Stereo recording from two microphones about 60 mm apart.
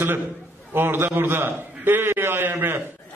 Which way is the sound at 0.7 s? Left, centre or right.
Right.